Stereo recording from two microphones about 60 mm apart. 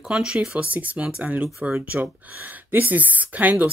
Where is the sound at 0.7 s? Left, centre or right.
Right.